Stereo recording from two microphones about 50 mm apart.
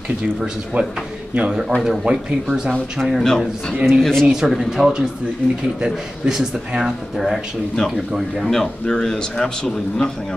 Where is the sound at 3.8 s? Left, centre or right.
Centre.